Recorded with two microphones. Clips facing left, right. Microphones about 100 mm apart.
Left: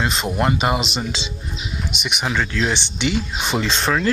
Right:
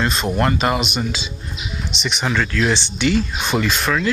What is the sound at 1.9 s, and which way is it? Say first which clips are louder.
Speech: right 2 dB; 15° left (ahead or behind).